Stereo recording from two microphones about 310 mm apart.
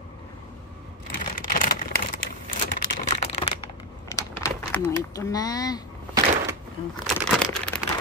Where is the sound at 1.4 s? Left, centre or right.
Left.